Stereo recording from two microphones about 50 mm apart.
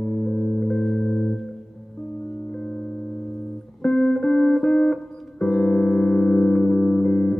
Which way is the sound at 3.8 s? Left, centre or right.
Centre.